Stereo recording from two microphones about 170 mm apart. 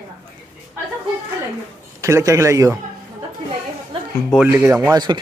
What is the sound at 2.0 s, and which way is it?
Speech, 20° right (ahead or behind).